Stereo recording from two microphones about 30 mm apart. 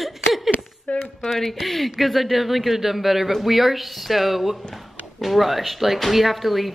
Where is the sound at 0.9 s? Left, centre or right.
Left.